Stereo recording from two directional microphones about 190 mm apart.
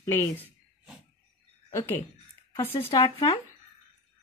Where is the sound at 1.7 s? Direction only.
10° left (ahead or behind).